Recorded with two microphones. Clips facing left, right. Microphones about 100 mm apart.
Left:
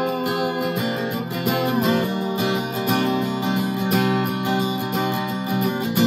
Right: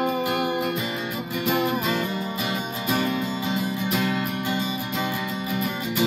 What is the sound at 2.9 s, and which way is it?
Music, 25° left (ahead or behind).